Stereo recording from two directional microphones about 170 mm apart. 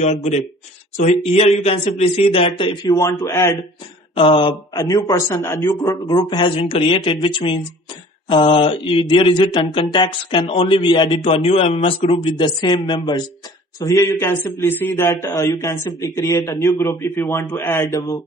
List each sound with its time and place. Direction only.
0.0 s speech: 40° left (ahead or behind); by 3.5 s 15° left (ahead or behind)
4.2 s mantra: 30° left (ahead or behind)
13.7 s a man's voice: 20° left (ahead or behind)
16.0 s mantra: 20° left (ahead or behind)
16.4 s a man's voice: 15° left (ahead or behind)